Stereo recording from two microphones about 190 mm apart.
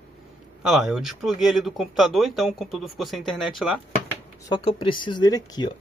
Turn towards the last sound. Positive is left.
turn(degrees=20)  # may be behind; listen again after turning